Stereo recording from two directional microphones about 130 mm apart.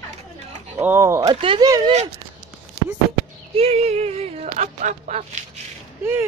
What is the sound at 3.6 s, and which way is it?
Speech, 50° right (ahead or behind).